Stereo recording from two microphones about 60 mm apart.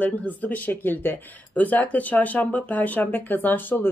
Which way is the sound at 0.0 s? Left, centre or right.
Left.